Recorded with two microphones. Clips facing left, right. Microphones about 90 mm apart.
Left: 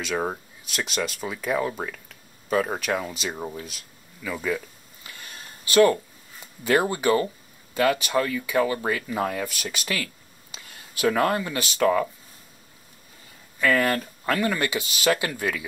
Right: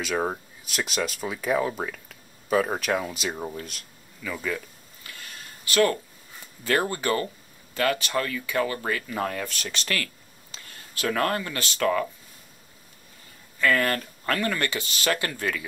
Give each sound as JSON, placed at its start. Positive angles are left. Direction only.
{"t": 0.0, "sound": "speech", "side_deg": 0}
{"t": 5.0, "sound": "a sound", "side_deg": 20}
{"t": 6.6, "sound": "speech", "side_deg": 15}
{"t": 10.5, "sound": "a sound", "side_deg": 15}
{"t": 11.1, "sound": "speech", "side_deg": 15}
{"t": 13.6, "sound": "speech", "side_deg": 15}